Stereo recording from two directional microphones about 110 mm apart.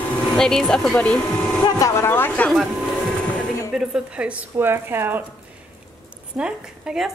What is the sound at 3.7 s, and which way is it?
A woman's voice, 5° right (ahead or behind).